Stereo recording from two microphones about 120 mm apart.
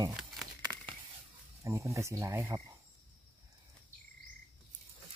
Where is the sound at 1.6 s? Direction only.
25° right (ahead or behind).